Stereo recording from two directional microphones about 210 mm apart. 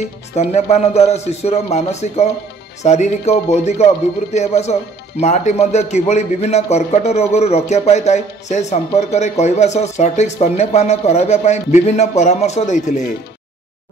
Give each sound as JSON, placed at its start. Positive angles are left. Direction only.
{"t": 0.4, "sound": "a man's voice", "side_deg": 30}